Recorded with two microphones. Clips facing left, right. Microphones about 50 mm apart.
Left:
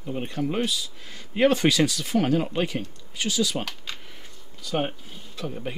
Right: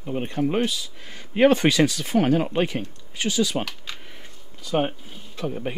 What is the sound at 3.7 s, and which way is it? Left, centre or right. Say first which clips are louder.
Speech: even; centre.